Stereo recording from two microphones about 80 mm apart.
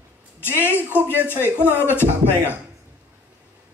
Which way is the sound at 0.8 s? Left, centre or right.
Right.